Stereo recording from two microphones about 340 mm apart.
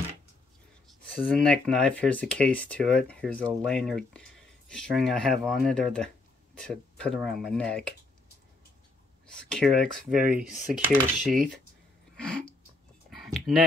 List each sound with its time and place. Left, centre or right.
1.1 s speech: centre
9.5 s speech: centre
10.1 s speech: right
10.7 s speech: centre
12.2 s a sound: centre